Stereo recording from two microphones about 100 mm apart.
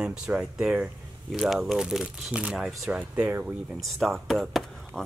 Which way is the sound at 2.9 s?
15° right (ahead or behind).